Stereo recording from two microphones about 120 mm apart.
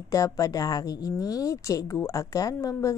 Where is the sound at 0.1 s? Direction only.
30° left (ahead or behind).